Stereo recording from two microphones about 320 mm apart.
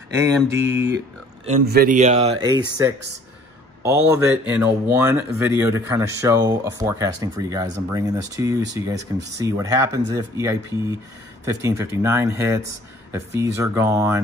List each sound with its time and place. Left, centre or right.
0.5 s speech: centre
1.4 s speech: right; by 14.2 s centre